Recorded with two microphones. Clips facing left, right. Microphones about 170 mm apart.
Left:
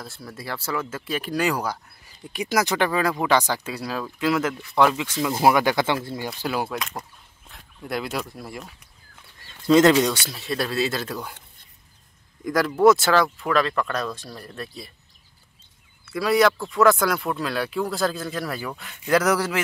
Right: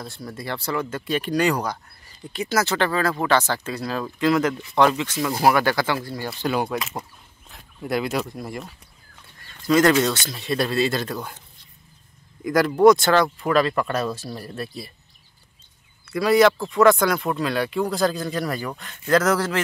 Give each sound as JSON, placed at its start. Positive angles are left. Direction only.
{"t": 0.0, "sound": "speech", "side_deg": 0}
{"t": 5.3, "sound": "speech", "side_deg": 20}
{"t": 6.4, "sound": "speech", "side_deg": 5}
{"t": 9.7, "sound": "speech", "side_deg": 25}
{"t": 9.9, "sound": "speech", "side_deg": 10}
{"t": 12.4, "sound": "speech", "side_deg": 0}
{"t": 16.1, "sound": "speech", "side_deg": 0}